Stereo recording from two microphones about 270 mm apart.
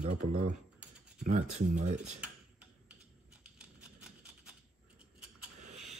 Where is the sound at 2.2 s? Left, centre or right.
Centre.